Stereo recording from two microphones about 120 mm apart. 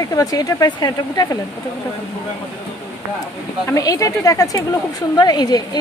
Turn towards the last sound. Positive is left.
turn(degrees=35)  # may be behind; listen again after turning